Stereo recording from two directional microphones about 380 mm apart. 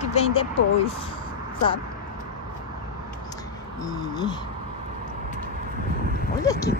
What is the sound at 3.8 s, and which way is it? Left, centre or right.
Speech, centre.